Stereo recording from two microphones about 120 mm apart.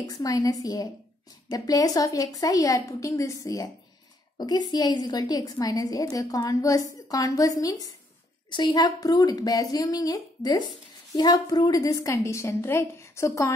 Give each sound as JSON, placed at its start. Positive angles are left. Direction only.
{"t": 0.1, "sound": "a woman's voice", "side_deg": 30}